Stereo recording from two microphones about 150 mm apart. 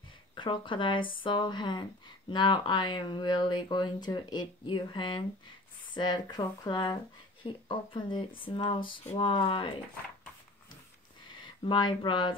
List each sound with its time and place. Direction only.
0.3 s speech: 35° left (ahead or behind)
11.4 s speech: 30° left (ahead or behind)